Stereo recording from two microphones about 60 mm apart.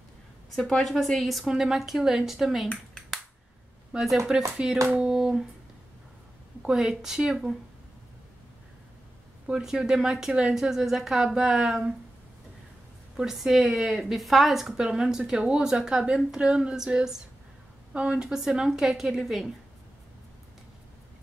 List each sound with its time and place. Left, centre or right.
0.6 s speech: centre
3.9 s speech: centre
4.6 s speech: centre
6.6 s speech: centre
9.5 s speech: centre
13.1 s speech: centre